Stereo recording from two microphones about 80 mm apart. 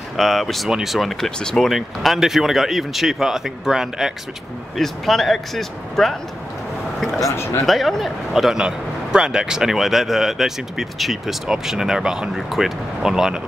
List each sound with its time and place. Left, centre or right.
0.2 s speech: centre
7.0 s a sound: centre
7.2 s speech: left
7.6 s speech: centre